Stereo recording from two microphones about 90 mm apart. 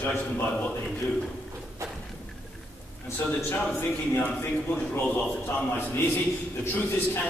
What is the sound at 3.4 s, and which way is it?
Speech, 15° left (ahead or behind).